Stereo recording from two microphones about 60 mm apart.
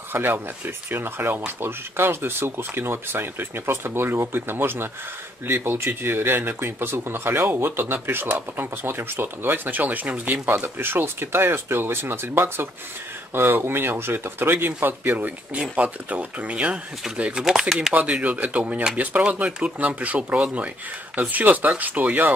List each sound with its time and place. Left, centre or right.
0.1 s speech: right; by 17.5 s centre
17.5 s speech: centre
17.9 s speech: right